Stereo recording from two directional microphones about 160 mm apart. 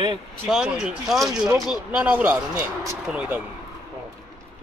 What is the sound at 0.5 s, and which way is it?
Speech, 5° right (ahead or behind).